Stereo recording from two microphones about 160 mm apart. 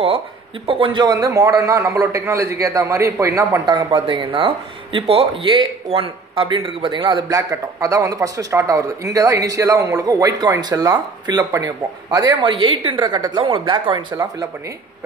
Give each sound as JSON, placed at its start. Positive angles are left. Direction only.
{"t": 0.7, "sound": "a man's voice", "side_deg": -35}